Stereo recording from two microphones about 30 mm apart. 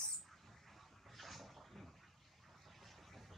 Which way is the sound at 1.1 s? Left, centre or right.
Centre.